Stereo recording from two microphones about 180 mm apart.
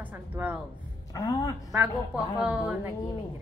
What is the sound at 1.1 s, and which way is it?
Speech, 20° left (ahead or behind).